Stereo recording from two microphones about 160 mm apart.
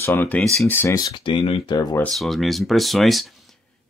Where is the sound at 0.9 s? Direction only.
30° left (ahead or behind).